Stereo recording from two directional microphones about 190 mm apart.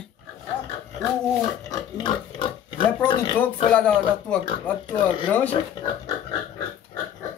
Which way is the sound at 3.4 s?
5° left (ahead or behind).